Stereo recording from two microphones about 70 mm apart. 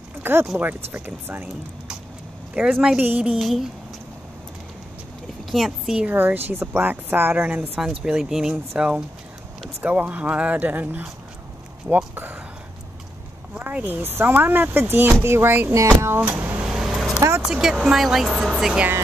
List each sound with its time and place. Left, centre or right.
0.2 s speech: right
2.6 s speech: right
3.3 s speech: centre
5.5 s speech: centre
6.1 s speech: right
7.7 s speech: centre; by 11.1 s right
13.6 s speech: right
16.2 s speech: right
16.6 s vehicle: centre
17.4 s speech: centre